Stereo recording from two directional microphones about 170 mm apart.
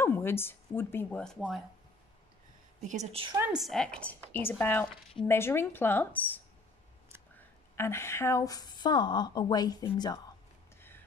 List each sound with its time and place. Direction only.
0.0 s speech: 15° left (ahead or behind)
2.8 s a woman's voice: 45° right (ahead or behind)
3.5 s a woman's voice: centre (ahead or behind); by 10.2 s 25° left (ahead or behind)